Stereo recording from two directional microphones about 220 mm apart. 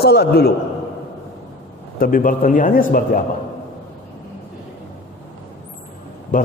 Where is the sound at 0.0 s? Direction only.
50° left (ahead or behind).